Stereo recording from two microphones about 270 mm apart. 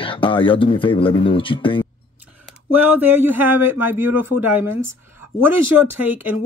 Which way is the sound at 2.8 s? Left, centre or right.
Centre.